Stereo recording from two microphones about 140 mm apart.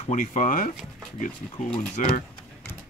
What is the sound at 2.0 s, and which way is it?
Speech, 65° left (ahead or behind).